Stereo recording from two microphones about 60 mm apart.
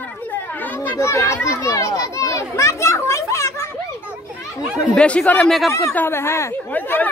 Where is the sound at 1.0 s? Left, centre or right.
Left.